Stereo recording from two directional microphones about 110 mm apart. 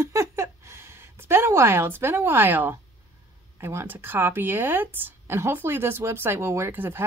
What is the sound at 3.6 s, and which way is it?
A woman's voice, 20° right (ahead or behind).